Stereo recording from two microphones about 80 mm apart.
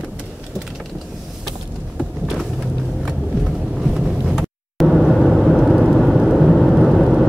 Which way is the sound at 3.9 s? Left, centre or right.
Centre.